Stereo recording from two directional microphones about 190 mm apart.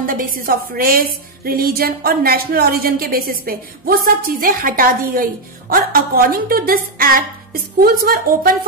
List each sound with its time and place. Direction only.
0.0 s a woman's voice: 50° right (ahead or behind)